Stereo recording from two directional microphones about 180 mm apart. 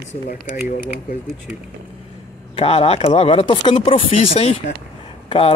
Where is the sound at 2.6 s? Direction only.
30° left (ahead or behind).